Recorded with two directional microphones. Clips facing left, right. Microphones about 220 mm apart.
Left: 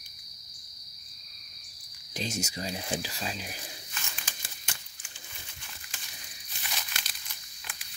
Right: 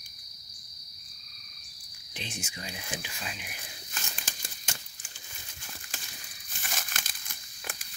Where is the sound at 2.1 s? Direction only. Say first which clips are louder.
Left 7 dB; 40° left (ahead or behind).